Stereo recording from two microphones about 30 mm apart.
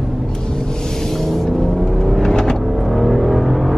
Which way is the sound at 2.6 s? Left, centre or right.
Centre.